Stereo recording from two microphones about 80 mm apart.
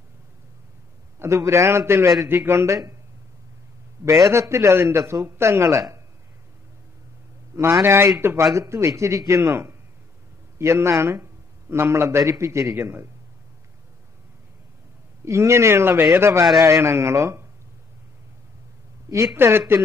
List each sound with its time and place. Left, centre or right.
1.2 s speech: right
4.3 s speech: right
7.8 s speech: right
15.2 s speech: right
19.0 s speech: right